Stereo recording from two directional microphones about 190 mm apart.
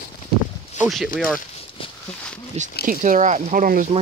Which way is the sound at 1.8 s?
30° left (ahead or behind).